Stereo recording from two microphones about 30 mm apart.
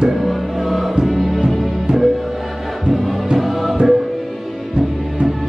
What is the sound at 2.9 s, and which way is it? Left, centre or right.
Music, centre.